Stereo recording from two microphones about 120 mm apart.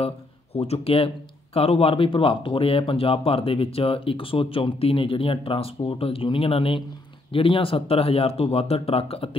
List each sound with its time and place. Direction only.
0.6 s speech: 55° left (ahead or behind)